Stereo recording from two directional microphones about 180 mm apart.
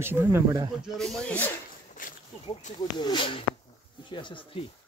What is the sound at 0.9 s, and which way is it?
Speech, 5° left (ahead or behind).